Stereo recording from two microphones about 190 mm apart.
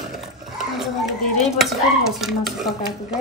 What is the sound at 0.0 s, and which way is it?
Dog, centre (ahead or behind).